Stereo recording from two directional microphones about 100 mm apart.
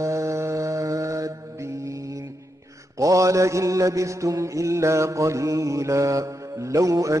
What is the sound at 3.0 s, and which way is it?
Mantra, 35° right (ahead or behind).